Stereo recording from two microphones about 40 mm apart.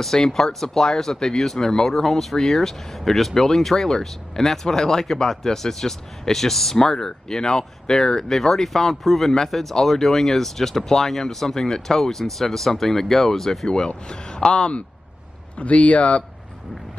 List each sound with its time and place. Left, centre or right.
0.0 s speech: centre
13.7 s speech: left
15.5 s speech: left